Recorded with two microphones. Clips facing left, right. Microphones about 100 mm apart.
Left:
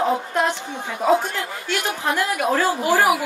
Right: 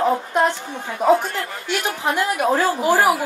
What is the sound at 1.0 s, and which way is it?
A woman's voice, 20° right (ahead or behind).